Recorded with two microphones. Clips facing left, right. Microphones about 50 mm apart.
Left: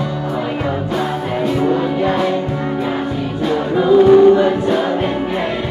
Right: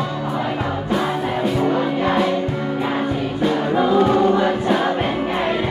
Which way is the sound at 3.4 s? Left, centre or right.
Centre.